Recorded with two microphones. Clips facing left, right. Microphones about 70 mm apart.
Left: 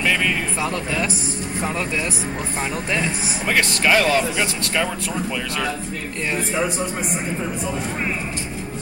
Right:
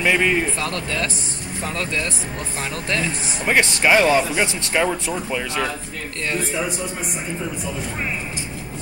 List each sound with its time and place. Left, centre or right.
0.0 s speech: centre
0.6 s speech: centre
3.4 s speech: right